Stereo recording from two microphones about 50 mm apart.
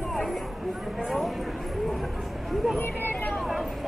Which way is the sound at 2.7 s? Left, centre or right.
Left.